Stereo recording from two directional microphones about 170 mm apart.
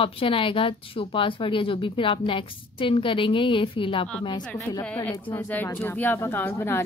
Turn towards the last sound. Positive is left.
turn(degrees=10)  # may be behind; listen again after turning